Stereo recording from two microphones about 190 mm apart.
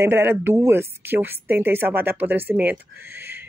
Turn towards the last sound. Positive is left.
turn(degrees=-10)  # may be behind; listen again after turning